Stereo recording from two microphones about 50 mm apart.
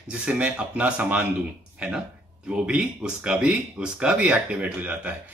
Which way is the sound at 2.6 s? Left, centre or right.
Right.